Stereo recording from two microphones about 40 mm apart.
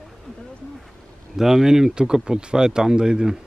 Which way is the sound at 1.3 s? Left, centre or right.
Centre.